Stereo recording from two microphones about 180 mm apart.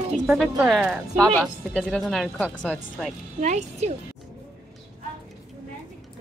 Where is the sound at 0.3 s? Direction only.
Centre (ahead or behind).